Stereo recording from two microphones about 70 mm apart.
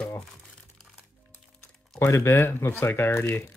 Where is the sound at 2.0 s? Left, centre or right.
Left.